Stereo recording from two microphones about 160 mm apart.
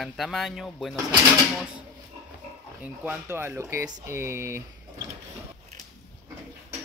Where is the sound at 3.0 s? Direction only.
15° right (ahead or behind).